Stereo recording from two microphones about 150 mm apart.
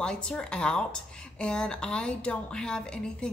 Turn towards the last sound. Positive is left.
turn(degrees=5)  # may be behind; listen again after turning